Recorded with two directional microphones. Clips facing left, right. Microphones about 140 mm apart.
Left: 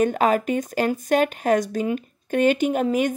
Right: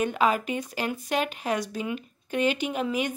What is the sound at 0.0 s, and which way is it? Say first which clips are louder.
Speech: left 5 dB; 45° left (ahead or behind).